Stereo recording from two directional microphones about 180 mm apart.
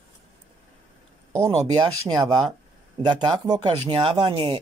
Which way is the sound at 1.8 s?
20° right (ahead or behind).